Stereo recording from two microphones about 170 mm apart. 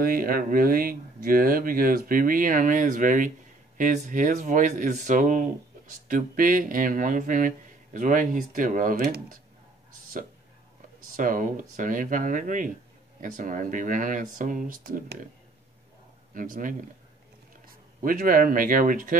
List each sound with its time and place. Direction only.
0.0 s speech: 55° right (ahead or behind)
11.1 s speech: 50° right (ahead or behind)
16.3 s speech: 55° right (ahead or behind)